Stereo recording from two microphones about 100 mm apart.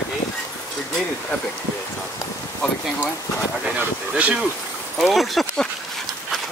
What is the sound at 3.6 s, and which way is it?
Speech, 15° right (ahead or behind).